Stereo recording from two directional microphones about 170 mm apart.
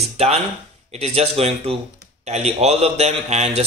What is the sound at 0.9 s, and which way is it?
A man's voice, 40° right (ahead or behind).